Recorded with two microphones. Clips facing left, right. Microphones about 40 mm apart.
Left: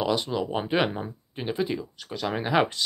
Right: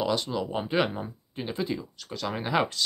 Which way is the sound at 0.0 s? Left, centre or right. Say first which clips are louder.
Left 2 dB; centre.